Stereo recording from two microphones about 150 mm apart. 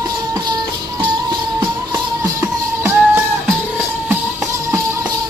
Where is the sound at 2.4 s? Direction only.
15° right (ahead or behind).